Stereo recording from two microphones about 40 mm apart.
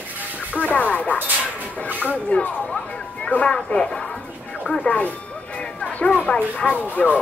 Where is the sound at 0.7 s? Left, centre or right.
Left.